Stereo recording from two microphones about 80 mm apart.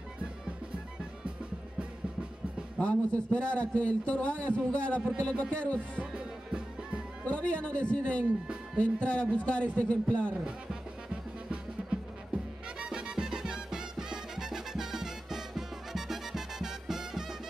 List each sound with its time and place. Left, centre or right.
2.8 s a man's voice: centre
5.9 s music: centre
7.2 s a man's voice: centre
12.7 s music: centre